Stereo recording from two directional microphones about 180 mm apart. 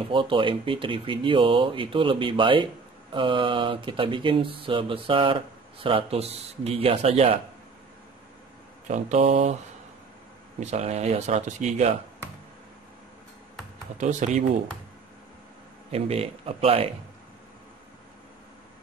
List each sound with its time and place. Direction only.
0.1 s speech: 25° right (ahead or behind)
8.8 s speech: 40° right (ahead or behind)
10.6 s speech: 40° right (ahead or behind)
13.9 s speech: 40° right (ahead or behind)
15.9 s speech: 35° right (ahead or behind)